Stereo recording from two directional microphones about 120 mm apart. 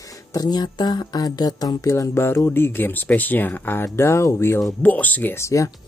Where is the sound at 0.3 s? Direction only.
35° left (ahead or behind).